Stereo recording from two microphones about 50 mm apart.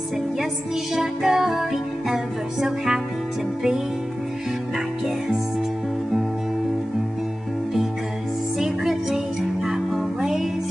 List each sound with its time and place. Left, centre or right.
0.9 s music: centre
8.5 s music: centre